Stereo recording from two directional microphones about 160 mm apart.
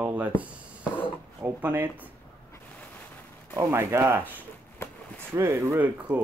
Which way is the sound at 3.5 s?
20° right (ahead or behind).